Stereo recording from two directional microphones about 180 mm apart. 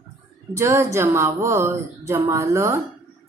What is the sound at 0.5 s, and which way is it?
Speech, 15° right (ahead or behind).